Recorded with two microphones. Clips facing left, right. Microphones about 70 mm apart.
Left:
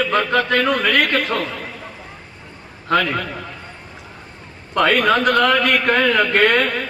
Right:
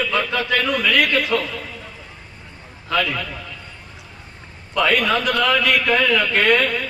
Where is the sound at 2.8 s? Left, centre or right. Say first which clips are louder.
Left 4 dB; left.